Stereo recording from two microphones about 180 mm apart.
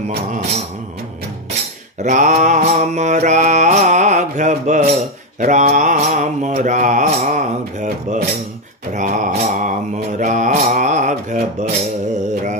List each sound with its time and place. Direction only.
2.0 s mantra: 45° right (ahead or behind)